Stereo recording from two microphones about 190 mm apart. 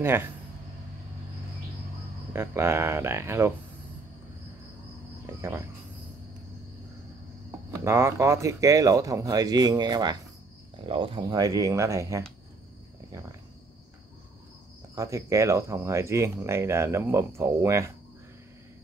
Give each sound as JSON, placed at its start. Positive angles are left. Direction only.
{"t": 0.0, "sound": "speech", "side_deg": -10}
{"t": 2.3, "sound": "speech", "side_deg": -10}
{"t": 5.2, "sound": "speech", "side_deg": -15}
{"t": 7.7, "sound": "speech", "side_deg": -15}
{"t": 15.0, "sound": "speech", "side_deg": -15}